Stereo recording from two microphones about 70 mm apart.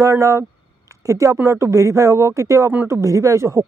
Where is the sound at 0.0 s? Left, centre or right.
Right.